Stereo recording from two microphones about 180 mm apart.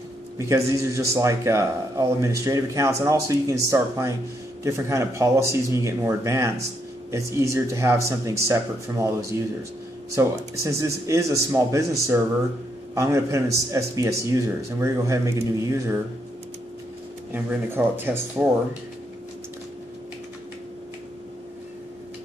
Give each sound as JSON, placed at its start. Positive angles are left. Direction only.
{"t": 0.5, "sound": "a man's voice", "side_deg": -15}
{"t": 17.3, "sound": "a man's voice", "side_deg": -10}